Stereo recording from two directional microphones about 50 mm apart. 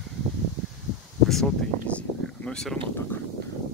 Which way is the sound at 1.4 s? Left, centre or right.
Left.